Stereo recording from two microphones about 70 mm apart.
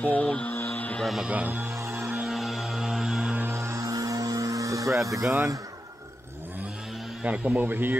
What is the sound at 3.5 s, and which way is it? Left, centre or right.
Mains hum, right.